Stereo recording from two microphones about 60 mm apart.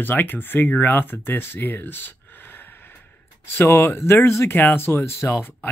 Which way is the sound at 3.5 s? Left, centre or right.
Left.